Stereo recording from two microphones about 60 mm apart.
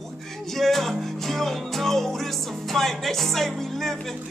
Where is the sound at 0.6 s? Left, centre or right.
Centre.